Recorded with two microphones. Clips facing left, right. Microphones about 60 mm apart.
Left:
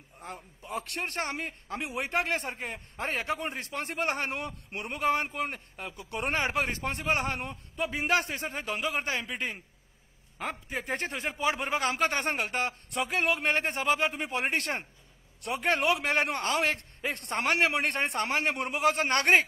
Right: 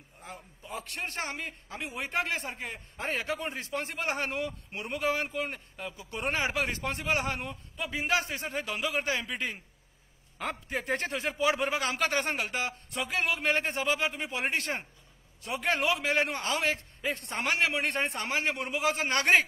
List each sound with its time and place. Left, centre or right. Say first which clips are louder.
0.2 s a man's voice: left 3 dB; left
10.4 s a man's voice: right 1 dB; centre
11.1 s a man's voice: right 2 dB; left